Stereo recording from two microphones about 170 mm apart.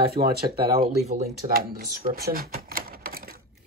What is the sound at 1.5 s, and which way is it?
Speech, 60° right (ahead or behind).